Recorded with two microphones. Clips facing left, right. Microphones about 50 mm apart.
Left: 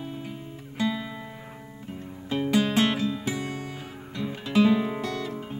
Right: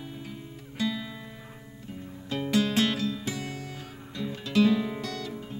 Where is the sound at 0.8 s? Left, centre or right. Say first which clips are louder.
Left 3 dB; left.